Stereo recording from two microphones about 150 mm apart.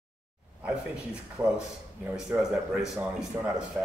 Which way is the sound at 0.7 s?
5° right (ahead or behind).